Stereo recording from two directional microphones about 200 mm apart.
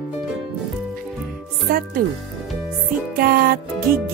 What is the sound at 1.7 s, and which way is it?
Music, 45° right (ahead or behind).